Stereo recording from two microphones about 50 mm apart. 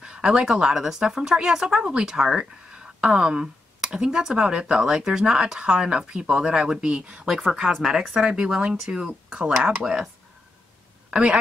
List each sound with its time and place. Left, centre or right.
0.0 s speech: centre
7.2 s speech: centre
11.1 s a woman's voice: centre